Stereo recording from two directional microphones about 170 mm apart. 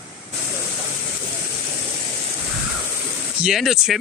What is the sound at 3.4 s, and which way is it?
Speech, centre (ahead or behind).